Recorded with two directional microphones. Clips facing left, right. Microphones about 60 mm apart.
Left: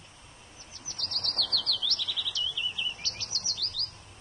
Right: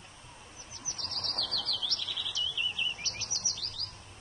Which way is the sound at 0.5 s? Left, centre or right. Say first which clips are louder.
Left 2 dB; centre.